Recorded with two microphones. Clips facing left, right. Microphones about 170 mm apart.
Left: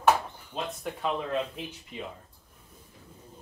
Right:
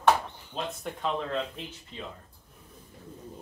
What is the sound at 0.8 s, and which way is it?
Speech, 5° left (ahead or behind).